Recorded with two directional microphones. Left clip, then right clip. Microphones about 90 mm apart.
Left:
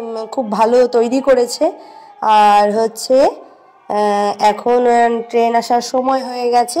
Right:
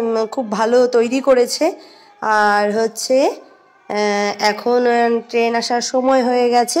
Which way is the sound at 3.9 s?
40° right (ahead or behind).